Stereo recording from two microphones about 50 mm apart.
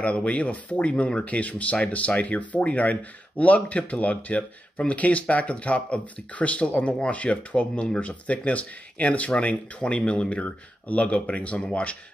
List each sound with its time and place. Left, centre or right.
0.0 s speech: left